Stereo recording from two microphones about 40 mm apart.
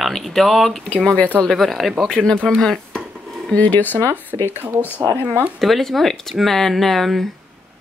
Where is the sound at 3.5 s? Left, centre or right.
Left.